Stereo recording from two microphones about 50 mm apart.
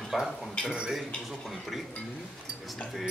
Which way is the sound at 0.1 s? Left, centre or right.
Centre.